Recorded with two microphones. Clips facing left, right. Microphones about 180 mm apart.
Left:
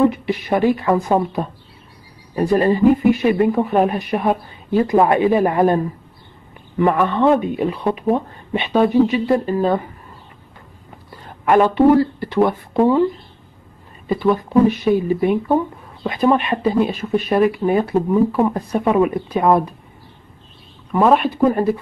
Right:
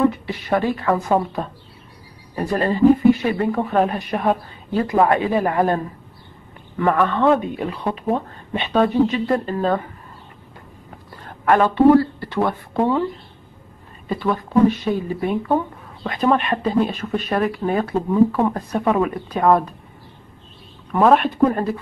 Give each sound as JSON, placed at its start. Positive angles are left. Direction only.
{"t": 0.3, "sound": "speech", "side_deg": 15}
{"t": 6.8, "sound": "speech", "side_deg": 10}
{"t": 11.4, "sound": "speech", "side_deg": 15}
{"t": 14.0, "sound": "speech", "side_deg": 15}
{"t": 20.9, "sound": "speech", "side_deg": 0}